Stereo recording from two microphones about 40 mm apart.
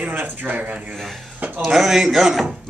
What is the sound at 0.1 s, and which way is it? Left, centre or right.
Speech, right.